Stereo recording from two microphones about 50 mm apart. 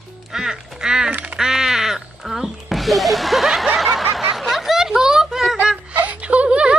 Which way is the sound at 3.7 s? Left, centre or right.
Centre.